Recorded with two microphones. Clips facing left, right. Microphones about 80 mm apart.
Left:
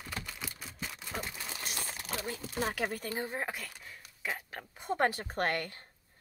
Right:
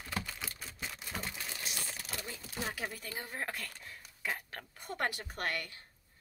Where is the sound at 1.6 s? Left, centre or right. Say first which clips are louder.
Left 2 dB; left.